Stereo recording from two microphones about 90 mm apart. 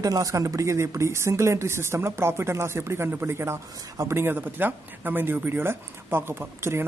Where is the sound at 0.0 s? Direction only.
40° right (ahead or behind).